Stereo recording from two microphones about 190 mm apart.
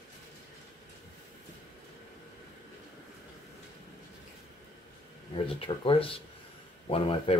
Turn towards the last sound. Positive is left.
turn(degrees=30)  # may be behind; listen again after turning